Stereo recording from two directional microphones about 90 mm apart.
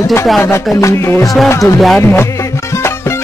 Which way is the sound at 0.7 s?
30° left (ahead or behind).